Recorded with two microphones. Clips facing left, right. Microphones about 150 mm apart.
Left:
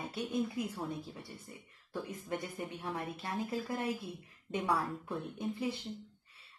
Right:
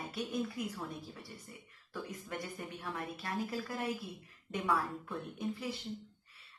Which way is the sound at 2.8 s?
25° left (ahead or behind).